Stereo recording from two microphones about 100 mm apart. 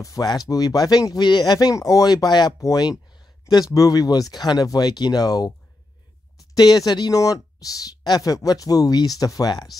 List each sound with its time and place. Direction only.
0.0 s speech: 40° left (ahead or behind)
6.5 s speech: 40° left (ahead or behind)